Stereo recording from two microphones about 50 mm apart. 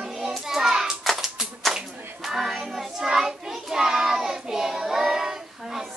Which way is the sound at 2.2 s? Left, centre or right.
Centre.